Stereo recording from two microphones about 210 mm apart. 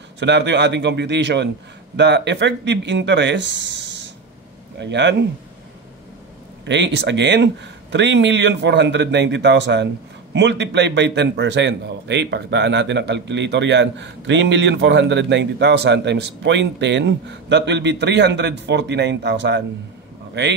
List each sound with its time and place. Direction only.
0.2 s a man's voice: 55° right (ahead or behind)
6.6 s a man's voice: 55° right (ahead or behind)